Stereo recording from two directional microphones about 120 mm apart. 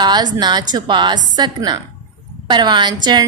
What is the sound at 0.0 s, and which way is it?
A woman's voice, 35° right (ahead or behind).